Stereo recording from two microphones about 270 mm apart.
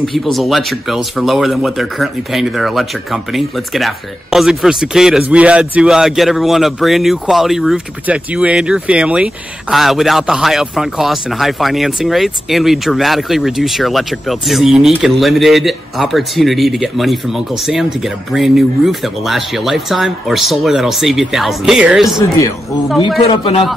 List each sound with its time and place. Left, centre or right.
0.0 s speech: centre
23.3 s a man's voice: centre